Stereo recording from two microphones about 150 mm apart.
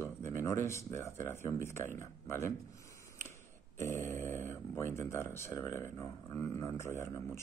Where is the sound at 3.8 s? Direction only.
20° left (ahead or behind).